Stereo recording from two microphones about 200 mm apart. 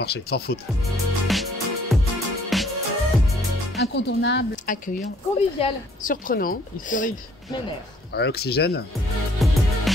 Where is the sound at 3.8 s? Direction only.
60° left (ahead or behind).